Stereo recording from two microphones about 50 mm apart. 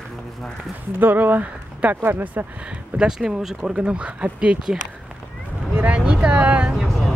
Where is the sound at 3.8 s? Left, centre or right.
Right.